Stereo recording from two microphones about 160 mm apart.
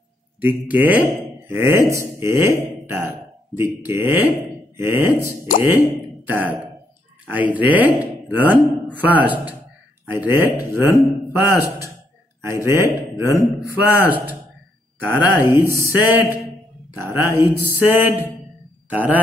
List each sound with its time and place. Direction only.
0.4 s speech: 10° right (ahead or behind)